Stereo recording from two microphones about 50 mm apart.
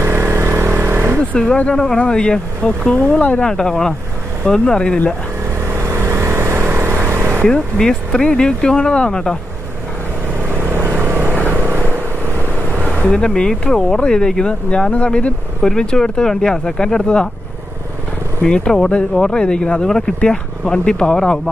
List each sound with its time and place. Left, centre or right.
0.0 s vehicle: right
1.3 s speech: centre
3.4 s speech: centre
5.7 s vehicle: right
6.7 s vehicle: right
7.4 s speech: centre
10.5 s vehicle: right
12.8 s speech: left
18.4 s speech: centre